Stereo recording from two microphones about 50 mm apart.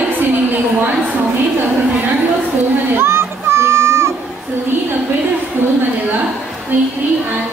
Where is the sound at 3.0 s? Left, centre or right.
Right.